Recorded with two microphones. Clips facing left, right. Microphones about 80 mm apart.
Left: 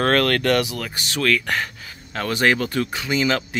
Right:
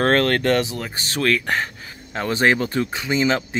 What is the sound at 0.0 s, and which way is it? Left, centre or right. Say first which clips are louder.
Speech: right 1 dB; right.